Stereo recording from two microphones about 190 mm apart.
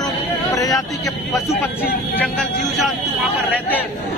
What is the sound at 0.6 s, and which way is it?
A man's voice, 20° left (ahead or behind).